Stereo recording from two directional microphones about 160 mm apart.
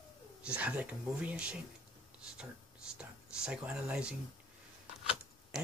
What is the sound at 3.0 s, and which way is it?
Speech, 5° right (ahead or behind).